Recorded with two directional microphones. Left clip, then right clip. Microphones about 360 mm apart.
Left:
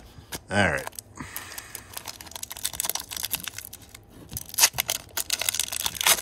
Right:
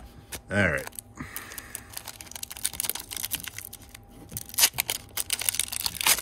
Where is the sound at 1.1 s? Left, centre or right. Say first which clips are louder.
Left 1 dB; centre.